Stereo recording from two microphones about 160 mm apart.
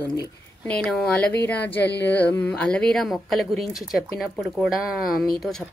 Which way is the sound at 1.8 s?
90° left.